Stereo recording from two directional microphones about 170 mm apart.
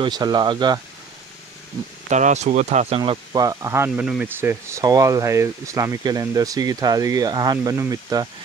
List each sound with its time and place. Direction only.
0.0 s speech: 25° right (ahead or behind)
2.0 s speech: 45° right (ahead or behind)
3.0 s speech: 20° right (ahead or behind)